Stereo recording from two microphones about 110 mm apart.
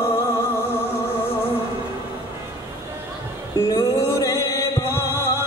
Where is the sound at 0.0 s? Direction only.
20° left (ahead or behind).